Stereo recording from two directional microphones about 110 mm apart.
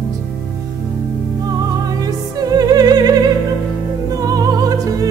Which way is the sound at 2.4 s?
35° right (ahead or behind).